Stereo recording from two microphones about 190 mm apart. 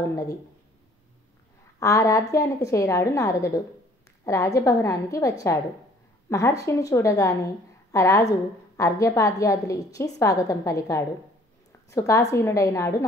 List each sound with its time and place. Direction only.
1.8 s a woman's voice: 15° left (ahead or behind)